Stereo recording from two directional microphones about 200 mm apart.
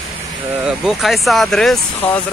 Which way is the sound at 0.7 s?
Centre (ahead or behind).